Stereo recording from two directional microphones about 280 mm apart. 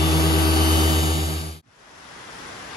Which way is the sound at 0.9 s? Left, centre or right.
Centre.